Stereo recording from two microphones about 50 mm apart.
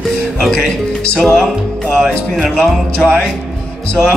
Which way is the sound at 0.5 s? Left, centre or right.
Centre.